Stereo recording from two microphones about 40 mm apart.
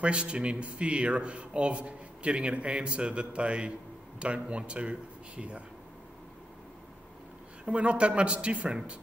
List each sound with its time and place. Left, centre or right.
0.0 s speech: right
7.6 s speech: right